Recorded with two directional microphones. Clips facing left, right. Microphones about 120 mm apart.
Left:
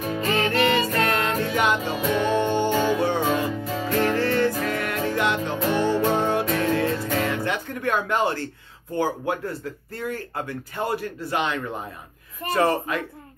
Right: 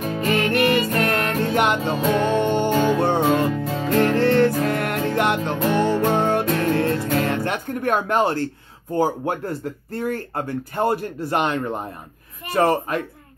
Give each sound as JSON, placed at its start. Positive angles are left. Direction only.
{"t": 0.2, "sound": "music", "side_deg": 25}
{"t": 1.4, "sound": "music", "side_deg": -55}
{"t": 8.9, "sound": "speech", "side_deg": -45}